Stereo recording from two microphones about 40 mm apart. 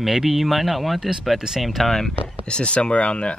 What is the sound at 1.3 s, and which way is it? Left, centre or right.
Speech, centre.